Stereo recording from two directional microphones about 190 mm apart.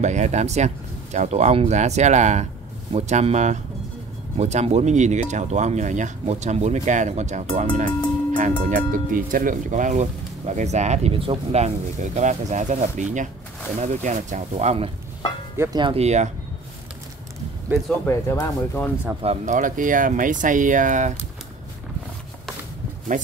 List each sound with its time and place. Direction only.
0.0 s speech: 40° right (ahead or behind)
15.5 s speech: 15° right (ahead or behind)
15.8 s speech: 30° right (ahead or behind)
18.0 s speech: 10° left (ahead or behind)
19.2 s speech: 40° right (ahead or behind)